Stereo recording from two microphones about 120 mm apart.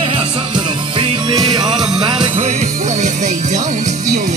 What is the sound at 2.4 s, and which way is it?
Music, 70° right (ahead or behind).